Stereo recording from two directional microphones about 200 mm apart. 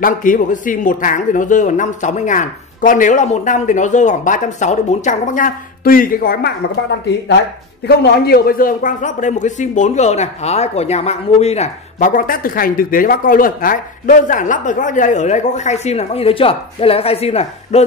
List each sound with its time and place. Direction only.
0.0 s a man's voice: 40° left (ahead or behind)
7.8 s a man's voice: 55° left (ahead or behind); by 17.8 s 30° left (ahead or behind)